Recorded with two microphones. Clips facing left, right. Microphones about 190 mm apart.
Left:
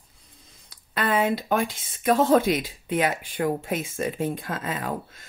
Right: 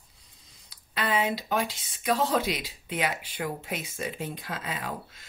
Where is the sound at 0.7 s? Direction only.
50° left (ahead or behind).